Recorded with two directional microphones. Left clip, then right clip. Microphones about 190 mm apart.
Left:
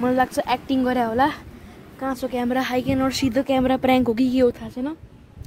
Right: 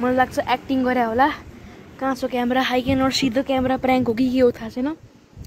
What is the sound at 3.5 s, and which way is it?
Speech, 35° left (ahead or behind).